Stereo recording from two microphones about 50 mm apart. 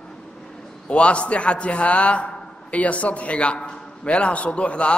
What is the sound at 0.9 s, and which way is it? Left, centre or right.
A man's voice, left.